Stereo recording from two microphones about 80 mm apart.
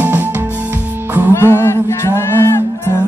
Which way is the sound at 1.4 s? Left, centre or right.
Left.